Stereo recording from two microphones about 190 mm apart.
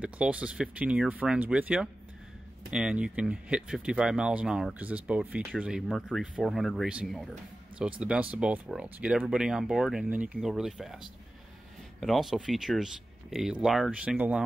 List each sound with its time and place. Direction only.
0.0 s speech: 5° right (ahead or behind)